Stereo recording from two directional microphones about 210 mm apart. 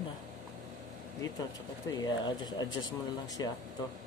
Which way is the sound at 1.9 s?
20° left (ahead or behind).